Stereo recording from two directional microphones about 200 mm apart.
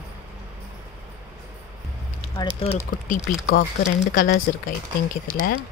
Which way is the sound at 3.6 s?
45° left (ahead or behind).